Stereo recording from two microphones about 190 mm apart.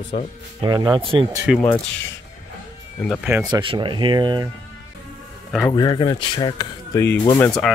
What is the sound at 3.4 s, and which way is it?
Speech, 25° right (ahead or behind).